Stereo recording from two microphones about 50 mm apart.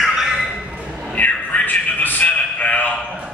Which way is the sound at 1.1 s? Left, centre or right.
Left.